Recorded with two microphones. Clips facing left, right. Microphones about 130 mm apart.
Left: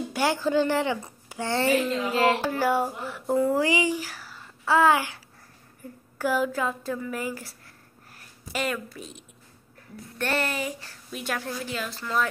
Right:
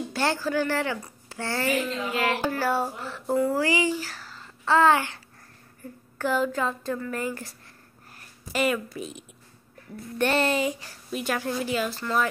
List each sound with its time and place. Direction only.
0.1 s speech: 15° left (ahead or behind)
1.6 s speech: 30° left (ahead or behind)
2.0 s music: 30° left (ahead or behind)
2.5 s a child's voice: 15° left (ahead or behind)
8.5 s speech: 5° right (ahead or behind)
10.1 s a sound: 20° right (ahead or behind)
11.1 s speech: centre (ahead or behind)